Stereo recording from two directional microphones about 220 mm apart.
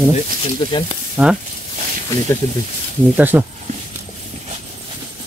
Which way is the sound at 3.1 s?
10° right (ahead or behind).